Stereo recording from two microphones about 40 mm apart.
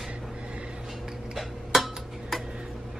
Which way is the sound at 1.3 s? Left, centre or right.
Centre.